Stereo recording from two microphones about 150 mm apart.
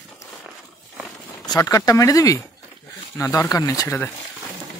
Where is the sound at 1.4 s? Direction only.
25° left (ahead or behind).